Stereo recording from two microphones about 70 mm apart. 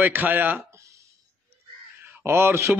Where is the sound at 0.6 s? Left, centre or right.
Right.